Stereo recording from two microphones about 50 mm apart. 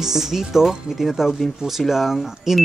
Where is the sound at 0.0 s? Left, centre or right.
Centre.